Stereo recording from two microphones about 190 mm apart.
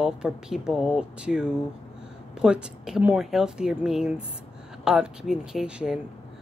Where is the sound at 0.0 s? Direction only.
5° right (ahead or behind).